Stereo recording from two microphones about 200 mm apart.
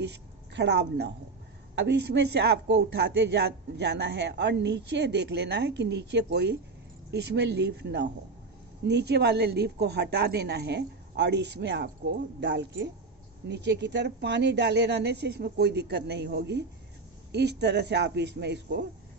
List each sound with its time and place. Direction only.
0.0 s a woman's voice: 60° right (ahead or behind)